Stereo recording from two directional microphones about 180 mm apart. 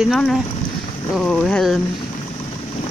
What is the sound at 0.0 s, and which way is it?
Speech, centre (ahead or behind).